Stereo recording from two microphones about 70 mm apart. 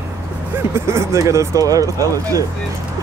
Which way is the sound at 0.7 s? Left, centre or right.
Right.